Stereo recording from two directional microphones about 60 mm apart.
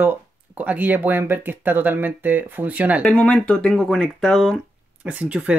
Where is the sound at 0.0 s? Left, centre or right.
Right.